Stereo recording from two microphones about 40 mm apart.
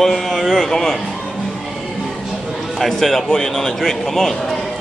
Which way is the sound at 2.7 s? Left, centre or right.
Centre.